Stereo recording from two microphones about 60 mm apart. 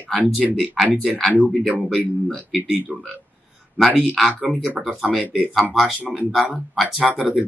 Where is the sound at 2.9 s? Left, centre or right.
Centre.